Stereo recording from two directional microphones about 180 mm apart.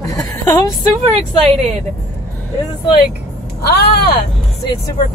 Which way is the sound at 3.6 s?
65° left (ahead or behind).